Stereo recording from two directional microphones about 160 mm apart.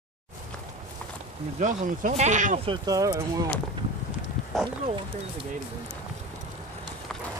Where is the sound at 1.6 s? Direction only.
50° right (ahead or behind).